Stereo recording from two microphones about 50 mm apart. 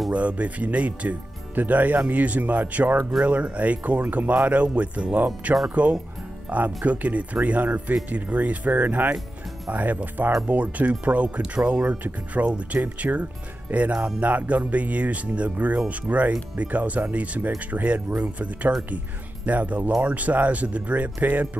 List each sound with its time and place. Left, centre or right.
0.1 s speech: right